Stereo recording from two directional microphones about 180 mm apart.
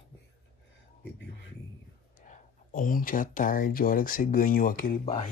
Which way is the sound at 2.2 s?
45° left (ahead or behind).